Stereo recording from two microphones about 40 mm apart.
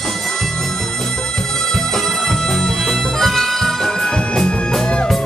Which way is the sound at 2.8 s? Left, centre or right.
Centre.